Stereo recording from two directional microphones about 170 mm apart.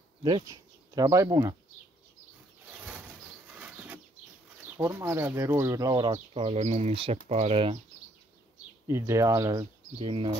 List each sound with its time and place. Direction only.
0.2 s speech: 25° right (ahead or behind)
2.7 s a sound: 5° right (ahead or behind)
3.5 s bird flight: 10° right (ahead or behind)
4.7 s speech: 15° right (ahead or behind)
6.1 s speech: 35° right (ahead or behind)
8.8 s speech: 15° right (ahead or behind)
9.9 s speech: 30° right (ahead or behind)